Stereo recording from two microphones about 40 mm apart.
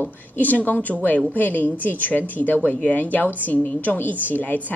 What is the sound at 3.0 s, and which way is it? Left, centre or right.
A woman's voice, left.